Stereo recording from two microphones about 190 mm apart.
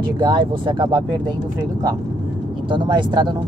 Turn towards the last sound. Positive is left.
turn(degrees=-25)  # may be behind; listen again after turning